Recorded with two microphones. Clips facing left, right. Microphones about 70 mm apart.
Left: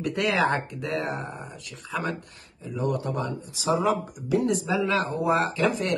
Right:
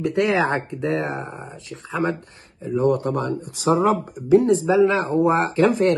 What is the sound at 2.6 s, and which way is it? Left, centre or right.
Speech, right.